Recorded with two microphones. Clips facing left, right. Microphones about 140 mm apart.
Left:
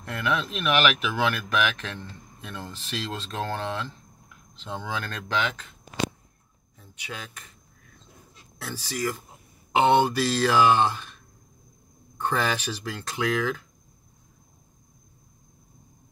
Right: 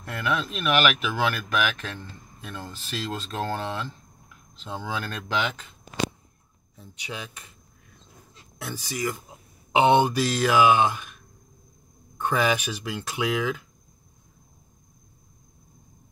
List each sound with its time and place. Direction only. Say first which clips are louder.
0.0 s speech: even; centre (ahead or behind)
8.7 s speech: even; 15° right (ahead or behind)
12.2 s speech: right 3 dB; 10° right (ahead or behind)